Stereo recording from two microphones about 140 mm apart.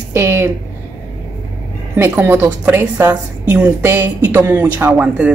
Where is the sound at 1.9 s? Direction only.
15° right (ahead or behind).